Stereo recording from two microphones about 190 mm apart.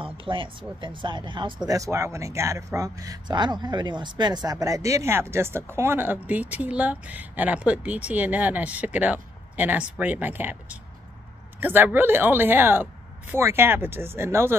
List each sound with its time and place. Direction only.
0.0 s speech: 25° right (ahead or behind)